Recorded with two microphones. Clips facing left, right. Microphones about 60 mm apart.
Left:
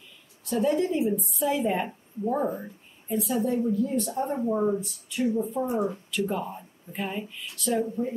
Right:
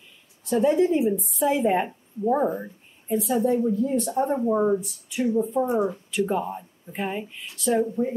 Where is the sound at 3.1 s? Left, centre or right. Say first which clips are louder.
Right 4 dB; right.